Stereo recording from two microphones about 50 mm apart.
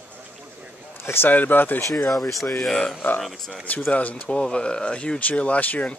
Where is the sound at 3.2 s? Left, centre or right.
Centre.